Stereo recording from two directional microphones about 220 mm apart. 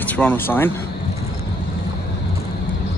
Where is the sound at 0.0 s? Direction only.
5° left (ahead or behind).